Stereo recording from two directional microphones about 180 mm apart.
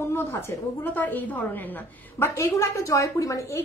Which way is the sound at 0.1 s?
15° left (ahead or behind).